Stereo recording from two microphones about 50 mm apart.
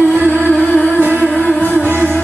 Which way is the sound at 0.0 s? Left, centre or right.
Left.